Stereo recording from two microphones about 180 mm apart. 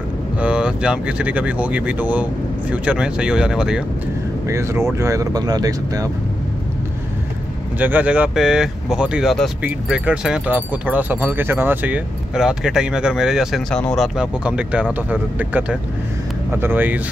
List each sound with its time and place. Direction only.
0.4 s speech: 5° right (ahead or behind)
4.5 s speech: 15° right (ahead or behind)
7.8 s speech: 10° right (ahead or behind)